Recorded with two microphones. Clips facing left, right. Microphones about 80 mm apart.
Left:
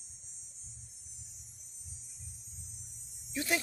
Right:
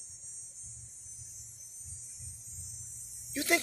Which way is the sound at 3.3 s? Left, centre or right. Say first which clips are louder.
Right 3 dB; right.